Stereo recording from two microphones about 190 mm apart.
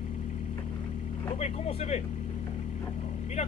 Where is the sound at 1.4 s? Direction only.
35° left (ahead or behind).